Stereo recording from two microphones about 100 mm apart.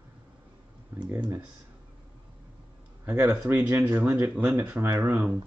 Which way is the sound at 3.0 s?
25° right (ahead or behind).